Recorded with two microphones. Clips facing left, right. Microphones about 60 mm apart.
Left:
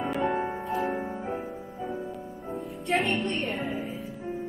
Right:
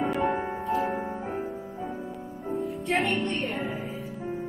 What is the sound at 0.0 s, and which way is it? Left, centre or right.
Music, centre.